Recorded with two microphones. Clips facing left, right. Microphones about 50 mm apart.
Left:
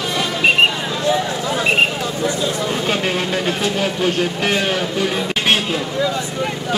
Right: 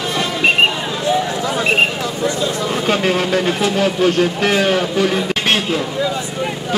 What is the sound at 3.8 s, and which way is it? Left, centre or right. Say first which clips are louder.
Speech: right 4 dB; right.